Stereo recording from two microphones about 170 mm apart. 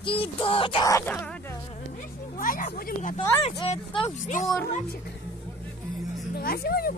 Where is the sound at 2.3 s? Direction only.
55° left (ahead or behind).